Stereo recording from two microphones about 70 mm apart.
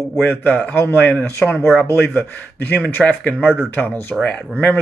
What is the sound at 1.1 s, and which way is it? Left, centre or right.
Speech, centre.